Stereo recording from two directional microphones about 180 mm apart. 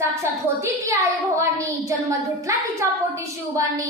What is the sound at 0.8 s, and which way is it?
A child's voice, 15° right (ahead or behind).